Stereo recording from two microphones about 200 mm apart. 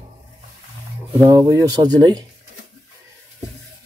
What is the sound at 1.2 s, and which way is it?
Speech, 15° right (ahead or behind).